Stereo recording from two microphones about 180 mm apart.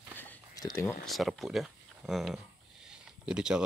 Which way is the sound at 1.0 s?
Centre (ahead or behind).